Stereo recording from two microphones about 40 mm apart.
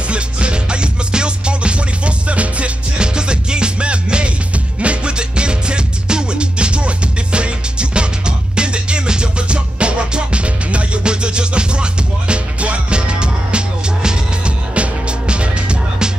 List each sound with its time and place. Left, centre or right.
0.1 s music: right